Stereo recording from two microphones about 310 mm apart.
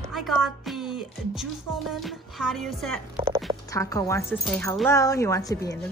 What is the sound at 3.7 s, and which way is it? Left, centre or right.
Speech, centre.